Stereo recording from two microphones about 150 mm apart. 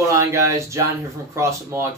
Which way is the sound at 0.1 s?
20° right (ahead or behind).